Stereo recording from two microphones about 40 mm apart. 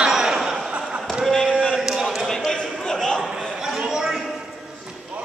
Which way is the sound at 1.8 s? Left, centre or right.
Centre.